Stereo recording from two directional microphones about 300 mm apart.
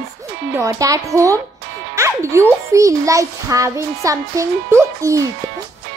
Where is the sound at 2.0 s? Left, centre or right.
Centre.